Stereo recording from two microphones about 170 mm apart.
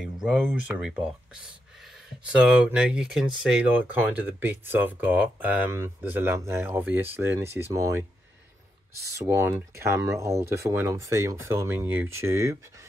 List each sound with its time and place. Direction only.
0.0 s a sound: centre (ahead or behind)
0.5 s speech: 5° right (ahead or behind)
9.2 s speech: 20° right (ahead or behind)